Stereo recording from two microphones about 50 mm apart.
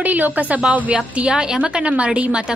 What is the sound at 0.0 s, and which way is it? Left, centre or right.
Speech, right.